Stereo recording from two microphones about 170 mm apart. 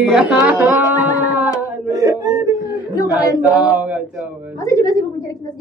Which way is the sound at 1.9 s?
20° right (ahead or behind).